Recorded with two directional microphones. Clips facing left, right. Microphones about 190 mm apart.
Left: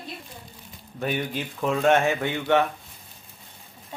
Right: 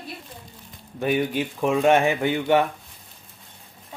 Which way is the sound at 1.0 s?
10° right (ahead or behind).